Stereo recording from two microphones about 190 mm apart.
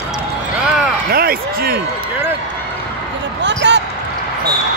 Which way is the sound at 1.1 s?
55° right (ahead or behind).